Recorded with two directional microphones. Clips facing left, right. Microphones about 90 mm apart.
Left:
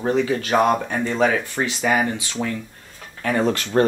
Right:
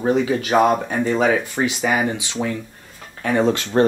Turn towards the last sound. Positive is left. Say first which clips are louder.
# right 2 dB
turn(degrees=-20)  # may be behind; listen again after turning